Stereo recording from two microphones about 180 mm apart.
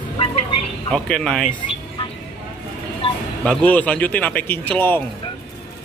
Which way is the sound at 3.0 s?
30° left (ahead or behind).